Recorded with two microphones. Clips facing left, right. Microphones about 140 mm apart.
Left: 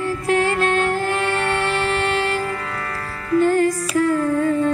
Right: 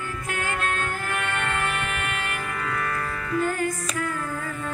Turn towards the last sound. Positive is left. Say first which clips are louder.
# left 13 dB
turn(degrees=30)  # may be behind; listen again after turning